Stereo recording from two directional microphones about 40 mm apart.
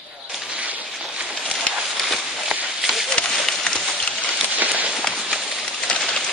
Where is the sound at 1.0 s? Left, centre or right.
Right.